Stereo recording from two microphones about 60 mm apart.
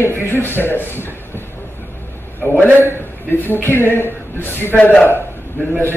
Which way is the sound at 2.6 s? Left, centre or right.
Left.